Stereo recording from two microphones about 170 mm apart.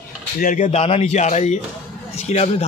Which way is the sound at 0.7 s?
35° left (ahead or behind).